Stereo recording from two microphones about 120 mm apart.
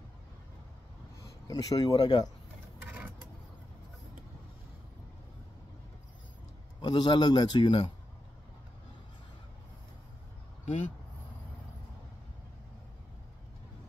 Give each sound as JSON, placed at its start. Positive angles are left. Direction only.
{"t": 1.2, "sound": "speech", "side_deg": 30}
{"t": 6.8, "sound": "a man's voice", "side_deg": 35}